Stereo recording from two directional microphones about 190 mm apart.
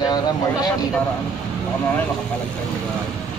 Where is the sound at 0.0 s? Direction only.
20° left (ahead or behind).